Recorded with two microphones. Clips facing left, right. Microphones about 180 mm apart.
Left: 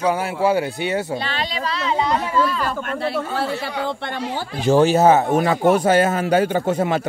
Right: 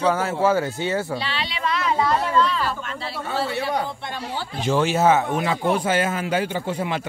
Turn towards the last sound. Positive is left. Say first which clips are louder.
# left 6 dB
turn(degrees=45)  # may be behind; listen again after turning